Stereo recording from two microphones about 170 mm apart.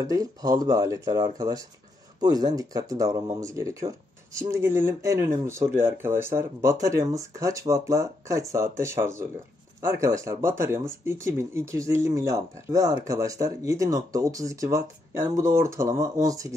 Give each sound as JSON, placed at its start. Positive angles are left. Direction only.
{"t": 0.0, "sound": "speech", "side_deg": -20}